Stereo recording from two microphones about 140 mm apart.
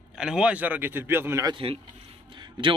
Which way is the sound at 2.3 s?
35° right (ahead or behind).